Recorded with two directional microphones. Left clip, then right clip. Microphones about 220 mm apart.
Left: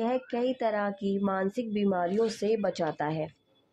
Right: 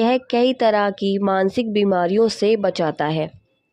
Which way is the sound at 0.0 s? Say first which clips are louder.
Right 12 dB; 40° right (ahead or behind).